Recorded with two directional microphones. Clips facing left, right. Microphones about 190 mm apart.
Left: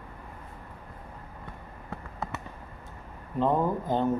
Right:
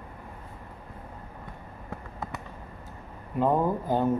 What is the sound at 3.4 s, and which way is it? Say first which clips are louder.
Speech: right 1 dB; 10° right (ahead or behind).